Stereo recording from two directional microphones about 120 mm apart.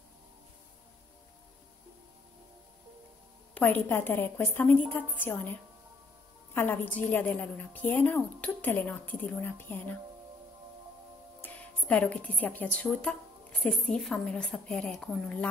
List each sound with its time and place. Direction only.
3.5 s a woman's voice: 15° left (ahead or behind)
11.4 s a woman's voice: 10° left (ahead or behind)